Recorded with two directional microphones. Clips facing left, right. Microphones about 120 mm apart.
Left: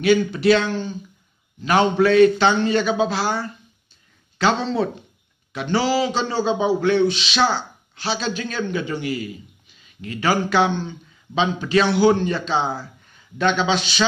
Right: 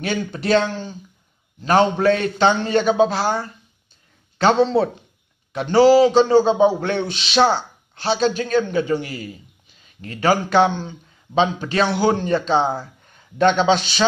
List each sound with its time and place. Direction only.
0.0 s a man's voice: 45° right (ahead or behind)